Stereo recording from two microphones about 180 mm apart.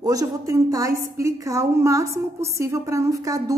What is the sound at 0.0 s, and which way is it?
A woman's voice, 20° right (ahead or behind).